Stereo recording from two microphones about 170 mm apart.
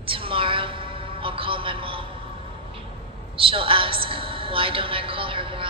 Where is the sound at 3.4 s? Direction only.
30° right (ahead or behind).